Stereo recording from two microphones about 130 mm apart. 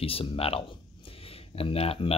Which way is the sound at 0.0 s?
45° left (ahead or behind).